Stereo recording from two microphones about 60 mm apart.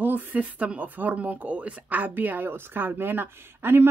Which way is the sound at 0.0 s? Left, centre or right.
Right.